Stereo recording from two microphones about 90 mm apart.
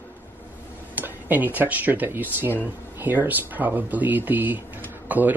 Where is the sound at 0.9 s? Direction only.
20° right (ahead or behind).